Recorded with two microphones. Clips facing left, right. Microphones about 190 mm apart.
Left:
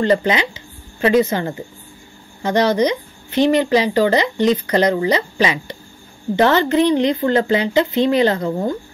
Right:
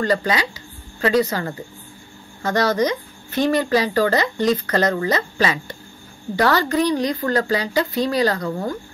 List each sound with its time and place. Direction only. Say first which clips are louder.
0.0 s speech: left 4 dB; 20° left (ahead or behind)